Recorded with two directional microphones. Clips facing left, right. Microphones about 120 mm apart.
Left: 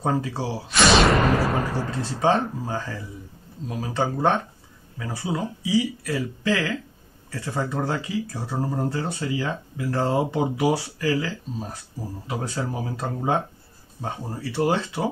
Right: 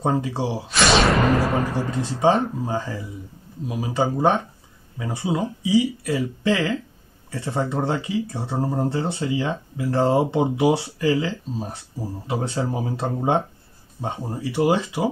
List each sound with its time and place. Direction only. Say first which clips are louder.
0.0 s speech: right 2 dB; 20° right (ahead or behind)
0.7 s a sound: even; centre (ahead or behind)
1.9 s speech: right 3 dB; 15° right (ahead or behind)